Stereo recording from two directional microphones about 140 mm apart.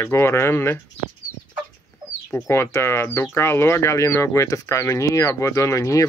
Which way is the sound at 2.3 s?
15° left (ahead or behind).